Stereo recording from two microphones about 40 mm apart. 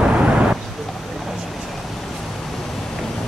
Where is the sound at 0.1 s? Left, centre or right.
Right.